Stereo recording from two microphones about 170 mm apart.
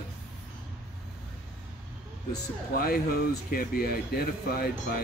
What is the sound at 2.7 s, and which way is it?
Speech, 60° left (ahead or behind).